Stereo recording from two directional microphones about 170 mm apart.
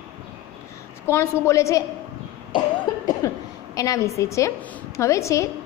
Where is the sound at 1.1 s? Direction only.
15° left (ahead or behind).